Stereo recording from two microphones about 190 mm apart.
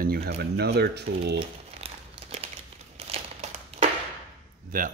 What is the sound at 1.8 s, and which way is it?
Crumpling, 30° right (ahead or behind).